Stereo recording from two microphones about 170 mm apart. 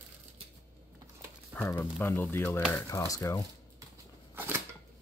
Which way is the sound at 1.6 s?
15° left (ahead or behind).